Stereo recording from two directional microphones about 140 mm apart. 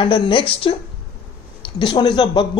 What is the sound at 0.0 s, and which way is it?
Speech, 35° left (ahead or behind).